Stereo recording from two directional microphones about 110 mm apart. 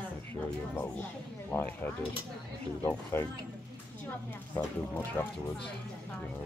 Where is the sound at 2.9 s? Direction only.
20° left (ahead or behind).